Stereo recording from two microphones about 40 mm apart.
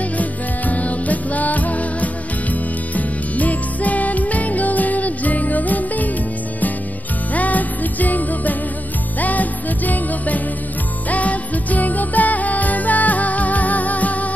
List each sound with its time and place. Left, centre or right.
0.2 s music: left
7.3 s music: left